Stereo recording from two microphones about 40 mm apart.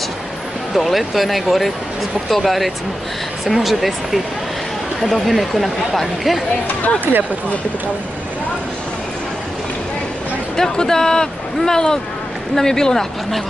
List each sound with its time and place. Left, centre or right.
0.7 s speech: centre
7.1 s speech: right
10.5 s speech: centre